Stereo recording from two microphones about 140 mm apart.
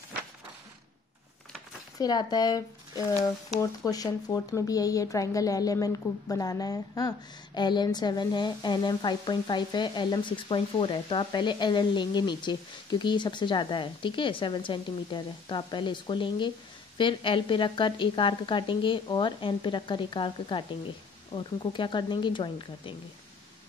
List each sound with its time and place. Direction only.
2.0 s speech: 30° left (ahead or behind)
3.8 s speech: 25° left (ahead or behind)